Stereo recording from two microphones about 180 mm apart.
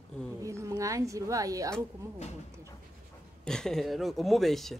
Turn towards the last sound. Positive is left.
turn(degrees=0)  # may be behind; listen again after turning